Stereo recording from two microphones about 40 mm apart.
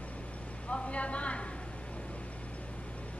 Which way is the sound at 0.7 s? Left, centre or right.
Left.